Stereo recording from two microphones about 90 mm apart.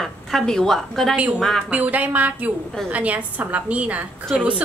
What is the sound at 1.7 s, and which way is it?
A woman's voice, 15° right (ahead or behind).